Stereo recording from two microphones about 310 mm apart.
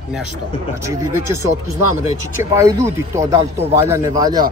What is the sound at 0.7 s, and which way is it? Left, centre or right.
Speech, centre.